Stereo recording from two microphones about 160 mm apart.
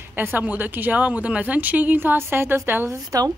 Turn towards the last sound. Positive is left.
turn(degrees=-20)  # may be behind; listen again after turning